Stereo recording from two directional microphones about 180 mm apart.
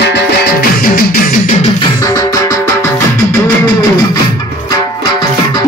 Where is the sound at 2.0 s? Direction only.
20° left (ahead or behind).